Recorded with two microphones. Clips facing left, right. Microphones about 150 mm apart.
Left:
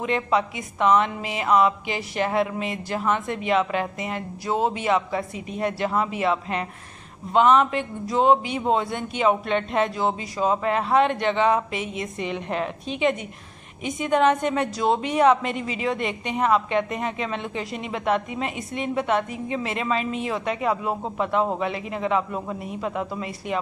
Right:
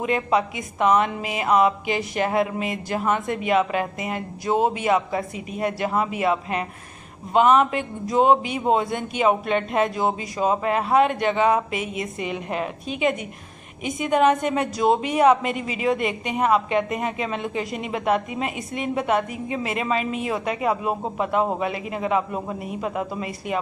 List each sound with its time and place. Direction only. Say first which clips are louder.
0.0 s speech: right 1 dB; 15° right (ahead or behind)